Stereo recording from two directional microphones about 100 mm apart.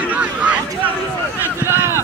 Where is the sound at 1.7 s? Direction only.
25° right (ahead or behind).